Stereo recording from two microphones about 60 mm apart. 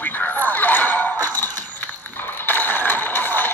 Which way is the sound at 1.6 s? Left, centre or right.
Left.